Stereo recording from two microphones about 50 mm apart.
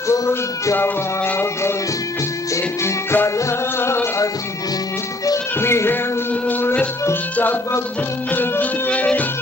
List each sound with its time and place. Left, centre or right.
0.7 s music: left
2.5 s music: left
3.3 s music: left
5.6 s music: left
6.4 s music: left
8.3 s music: left